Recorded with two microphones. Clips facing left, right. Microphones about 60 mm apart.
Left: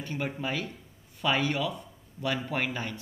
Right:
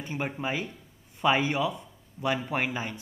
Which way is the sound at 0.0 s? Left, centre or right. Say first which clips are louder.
Right 1 dB; right.